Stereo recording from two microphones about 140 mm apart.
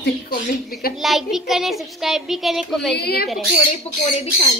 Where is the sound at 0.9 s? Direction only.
Centre (ahead or behind).